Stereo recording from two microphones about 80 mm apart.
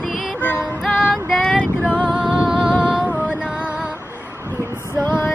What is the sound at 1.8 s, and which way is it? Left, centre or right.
Music, centre.